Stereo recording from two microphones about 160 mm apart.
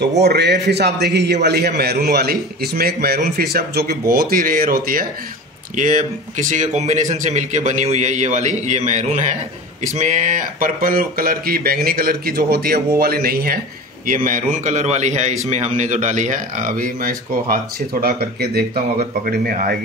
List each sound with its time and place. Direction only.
0.2 s a man's voice: 90° right
1.8 s speech: 75° right (ahead or behind)
4.1 s speech: 70° right (ahead or behind)
5.8 s a man's voice: 50° right (ahead or behind); by 13.6 s 70° right (ahead or behind)
14.0 s a man's voice: 60° right (ahead or behind); by 18.7 s 80° right
19.2 s speech: 65° right (ahead or behind)